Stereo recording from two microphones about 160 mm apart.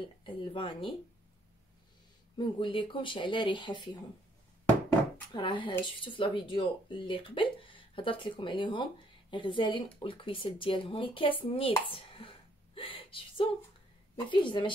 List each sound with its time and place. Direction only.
0.0 s speech: 30° left (ahead or behind)
2.3 s speech: 30° left (ahead or behind)
5.3 s speech: 30° left (ahead or behind)
11.9 s a sound: 35° left (ahead or behind)
14.3 s speech: 30° left (ahead or behind)